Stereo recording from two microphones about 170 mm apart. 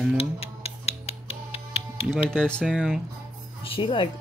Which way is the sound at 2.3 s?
5° left (ahead or behind).